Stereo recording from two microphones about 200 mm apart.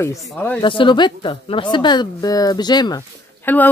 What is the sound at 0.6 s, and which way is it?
A woman's voice, 25° left (ahead or behind).